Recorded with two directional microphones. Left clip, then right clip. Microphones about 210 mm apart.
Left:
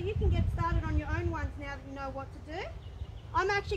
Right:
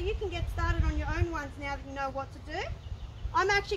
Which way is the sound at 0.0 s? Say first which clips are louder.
Right 2 dB; 10° right (ahead or behind).